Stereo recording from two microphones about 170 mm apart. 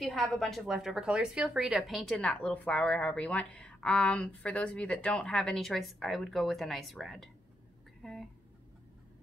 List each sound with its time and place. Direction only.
0.0 s a woman's voice: centre (ahead or behind)